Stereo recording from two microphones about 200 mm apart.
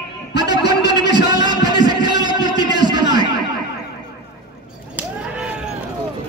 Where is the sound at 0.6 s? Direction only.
60° left (ahead or behind).